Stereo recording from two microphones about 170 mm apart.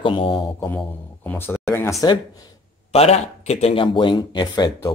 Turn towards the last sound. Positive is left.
turn(degrees=25)  # may be behind; listen again after turning